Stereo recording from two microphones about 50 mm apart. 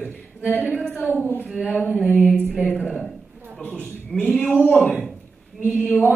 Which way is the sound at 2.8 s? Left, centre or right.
Centre.